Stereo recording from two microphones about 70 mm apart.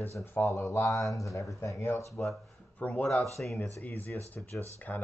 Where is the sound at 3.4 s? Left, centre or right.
Centre.